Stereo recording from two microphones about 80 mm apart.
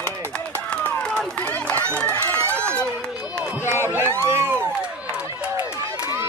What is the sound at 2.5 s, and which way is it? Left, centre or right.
Run, centre.